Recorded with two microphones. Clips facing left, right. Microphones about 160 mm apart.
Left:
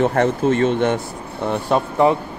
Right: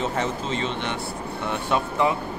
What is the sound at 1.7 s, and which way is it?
Speech, 35° left (ahead or behind).